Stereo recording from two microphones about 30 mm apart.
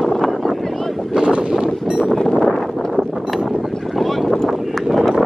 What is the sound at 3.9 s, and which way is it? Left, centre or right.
Boat, centre.